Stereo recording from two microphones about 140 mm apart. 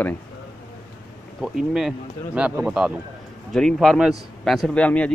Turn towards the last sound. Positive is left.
turn(degrees=10)  # may be behind; listen again after turning